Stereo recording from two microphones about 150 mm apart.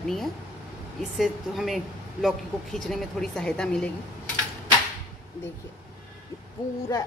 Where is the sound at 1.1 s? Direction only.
Centre (ahead or behind).